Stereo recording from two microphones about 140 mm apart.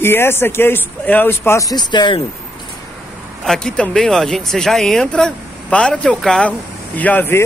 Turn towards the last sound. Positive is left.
turn(degrees=15)  # may be behind; listen again after turning